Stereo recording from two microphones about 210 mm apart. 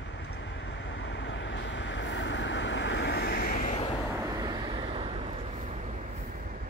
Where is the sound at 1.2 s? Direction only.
60° left (ahead or behind); by 3.7 s 45° left (ahead or behind).